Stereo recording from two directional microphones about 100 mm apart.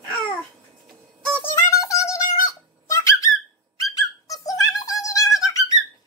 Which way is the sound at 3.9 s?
35° left (ahead or behind).